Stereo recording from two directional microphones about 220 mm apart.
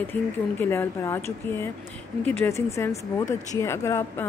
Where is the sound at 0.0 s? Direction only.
10° left (ahead or behind).